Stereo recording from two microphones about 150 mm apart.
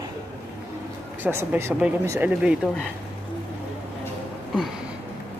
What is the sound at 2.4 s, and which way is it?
Speech, 5° right (ahead or behind).